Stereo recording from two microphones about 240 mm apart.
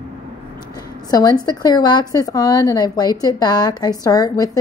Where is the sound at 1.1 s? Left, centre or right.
Centre.